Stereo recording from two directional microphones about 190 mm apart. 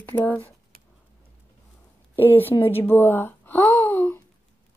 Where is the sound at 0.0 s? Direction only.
10° left (ahead or behind).